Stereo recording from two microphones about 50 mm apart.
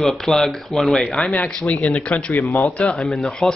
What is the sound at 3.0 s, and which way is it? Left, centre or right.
Speech, centre.